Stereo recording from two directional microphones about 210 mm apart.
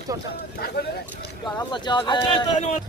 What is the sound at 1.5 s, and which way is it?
Speech, 20° left (ahead or behind).